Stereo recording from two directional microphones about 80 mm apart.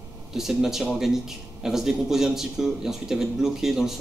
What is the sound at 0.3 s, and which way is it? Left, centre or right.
Speech, centre.